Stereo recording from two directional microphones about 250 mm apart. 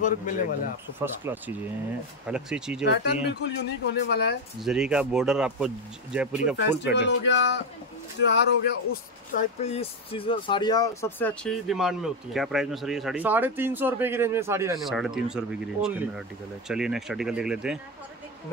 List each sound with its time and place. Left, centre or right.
0.0 s a man's voice: left
0.9 s speech: centre
2.9 s speech: left
4.6 s speech: centre
7.0 s speech: left
9.3 s speech: left; by 17.7 s centre